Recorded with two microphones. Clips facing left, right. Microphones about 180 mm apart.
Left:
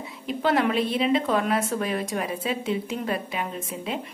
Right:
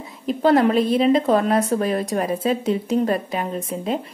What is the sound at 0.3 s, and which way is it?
A woman's voice, 40° right (ahead or behind).